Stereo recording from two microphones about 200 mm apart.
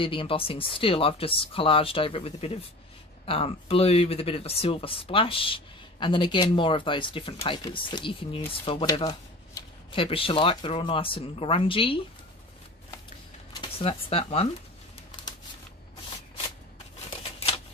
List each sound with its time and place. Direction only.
0.0 s speech: 25° left (ahead or behind)
13.5 s speech: 25° left (ahead or behind)